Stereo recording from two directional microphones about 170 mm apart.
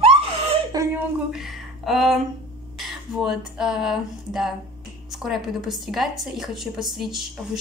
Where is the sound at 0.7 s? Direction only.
20° right (ahead or behind).